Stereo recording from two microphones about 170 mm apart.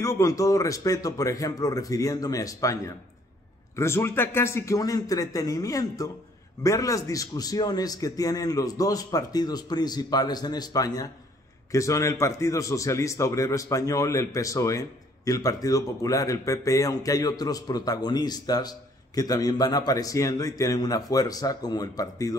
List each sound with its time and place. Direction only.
0.0 s a man's voice: 20° left (ahead or behind)